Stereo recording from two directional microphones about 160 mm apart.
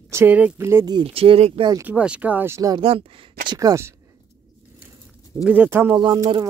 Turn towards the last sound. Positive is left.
turn(degrees=-20)  # may be behind; listen again after turning